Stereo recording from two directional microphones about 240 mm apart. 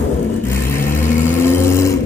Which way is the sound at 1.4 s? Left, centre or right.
Centre.